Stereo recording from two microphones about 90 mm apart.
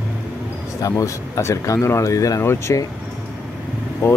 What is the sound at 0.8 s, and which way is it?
Speech, 40° left (ahead or behind).